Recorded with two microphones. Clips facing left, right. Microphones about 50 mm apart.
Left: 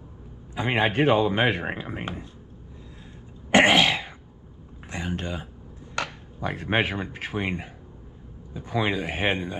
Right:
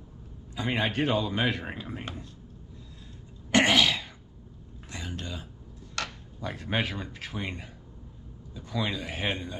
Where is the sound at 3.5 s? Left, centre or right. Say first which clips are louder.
Left 5 dB; left.